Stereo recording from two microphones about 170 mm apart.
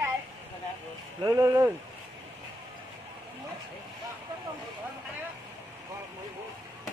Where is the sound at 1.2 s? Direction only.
20° right (ahead or behind).